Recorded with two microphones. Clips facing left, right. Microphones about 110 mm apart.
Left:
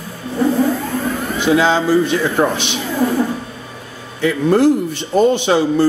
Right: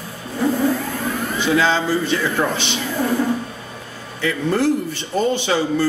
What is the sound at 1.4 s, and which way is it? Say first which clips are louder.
A man's voice: left 5 dB; 15° left (ahead or behind).